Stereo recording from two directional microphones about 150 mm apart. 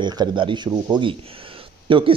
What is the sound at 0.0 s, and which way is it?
A man's voice, 30° right (ahead or behind).